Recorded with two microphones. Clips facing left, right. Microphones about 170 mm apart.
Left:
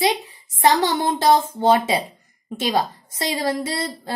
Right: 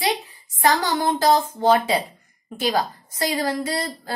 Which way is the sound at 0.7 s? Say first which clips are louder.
Left 1 dB; 20° left (ahead or behind).